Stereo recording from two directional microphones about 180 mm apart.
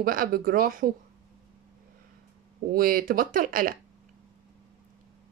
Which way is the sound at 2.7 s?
55° right (ahead or behind).